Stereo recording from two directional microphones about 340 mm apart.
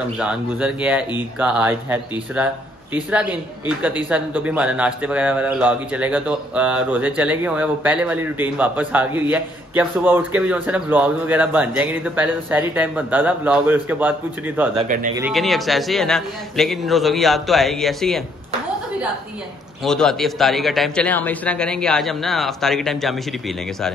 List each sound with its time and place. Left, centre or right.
0.2 s a man's voice: centre
14.8 s a man's voice: centre
15.2 s a man's voice: centre
19.8 s a man's voice: centre